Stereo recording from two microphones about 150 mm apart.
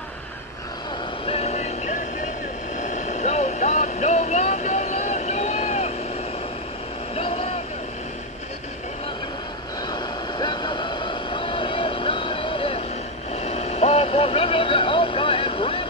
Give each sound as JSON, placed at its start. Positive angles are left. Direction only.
{"t": 1.2, "sound": "vehicle", "side_deg": 40}
{"t": 7.2, "sound": "vehicle", "side_deg": 40}
{"t": 9.8, "sound": "vehicle", "side_deg": 30}